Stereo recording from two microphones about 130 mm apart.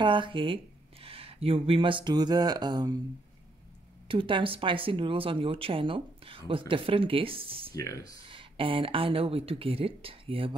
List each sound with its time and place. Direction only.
0.0 s speech: 40° right (ahead or behind)
4.1 s speech: 40° right (ahead or behind)
7.7 s speech: 25° left (ahead or behind)
8.3 s speech: 40° right (ahead or behind)